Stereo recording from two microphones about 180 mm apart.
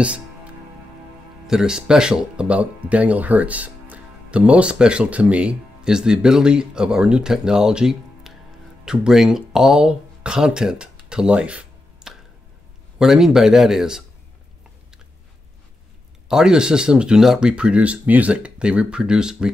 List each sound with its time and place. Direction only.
0.0 s music: 5° right (ahead or behind)
1.5 s speech: 5° right (ahead or behind)
16.3 s speech: 5° right (ahead or behind)